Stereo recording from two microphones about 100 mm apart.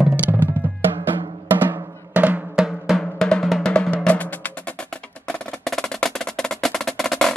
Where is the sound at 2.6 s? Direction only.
Centre (ahead or behind).